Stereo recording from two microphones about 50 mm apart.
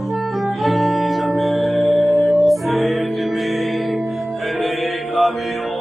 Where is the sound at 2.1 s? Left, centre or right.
Left.